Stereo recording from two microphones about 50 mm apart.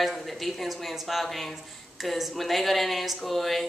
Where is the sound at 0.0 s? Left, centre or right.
Centre.